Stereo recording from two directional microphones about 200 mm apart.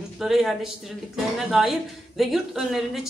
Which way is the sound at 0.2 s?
Centre (ahead or behind).